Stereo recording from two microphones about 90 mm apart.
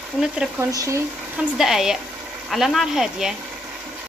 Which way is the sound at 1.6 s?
5° right (ahead or behind).